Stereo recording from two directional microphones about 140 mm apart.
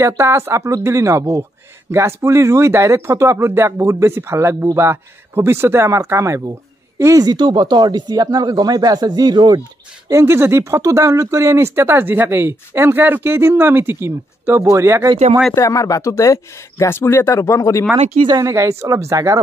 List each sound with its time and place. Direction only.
0.0 s speech: 20° right (ahead or behind)
10.0 s speech: 20° right (ahead or behind)
15.5 s speech: 25° left (ahead or behind)
18.2 s speech: 25° right (ahead or behind)